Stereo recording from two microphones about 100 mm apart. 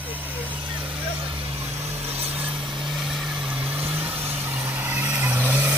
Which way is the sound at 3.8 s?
20° right (ahead or behind).